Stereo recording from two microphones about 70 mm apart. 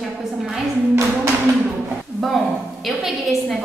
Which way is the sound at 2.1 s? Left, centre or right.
Centre.